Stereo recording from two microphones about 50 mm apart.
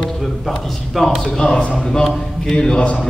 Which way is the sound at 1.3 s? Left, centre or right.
Centre.